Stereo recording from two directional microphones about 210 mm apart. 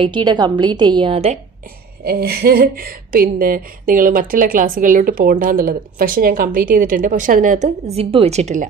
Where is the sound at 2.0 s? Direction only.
45° right (ahead or behind).